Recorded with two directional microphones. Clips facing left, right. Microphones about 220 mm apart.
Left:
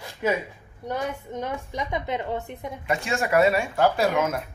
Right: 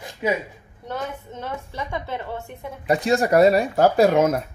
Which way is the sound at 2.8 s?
35° right (ahead or behind).